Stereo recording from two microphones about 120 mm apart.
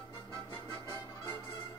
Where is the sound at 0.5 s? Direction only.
40° left (ahead or behind).